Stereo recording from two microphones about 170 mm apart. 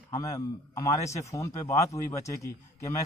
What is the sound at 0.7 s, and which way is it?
A man's voice, 15° left (ahead or behind).